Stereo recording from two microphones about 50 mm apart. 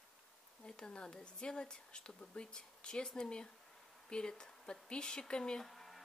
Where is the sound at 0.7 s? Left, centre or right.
Centre.